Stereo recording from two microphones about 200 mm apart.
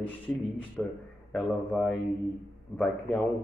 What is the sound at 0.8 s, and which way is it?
A man's voice, 5° left (ahead or behind).